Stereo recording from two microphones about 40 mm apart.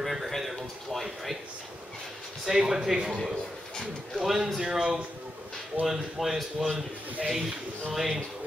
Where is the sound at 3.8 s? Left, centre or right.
Centre.